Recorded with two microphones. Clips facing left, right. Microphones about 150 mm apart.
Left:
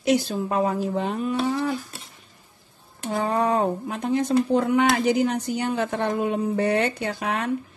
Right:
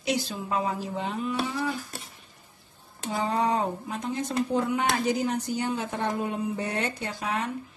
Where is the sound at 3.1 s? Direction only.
55° left (ahead or behind).